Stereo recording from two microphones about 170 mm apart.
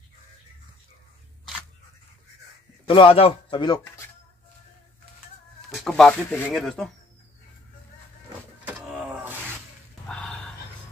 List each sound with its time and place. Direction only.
2.9 s speech: 30° left (ahead or behind)
5.8 s speech: 5° left (ahead or behind)
8.6 s a sound: 5° right (ahead or behind)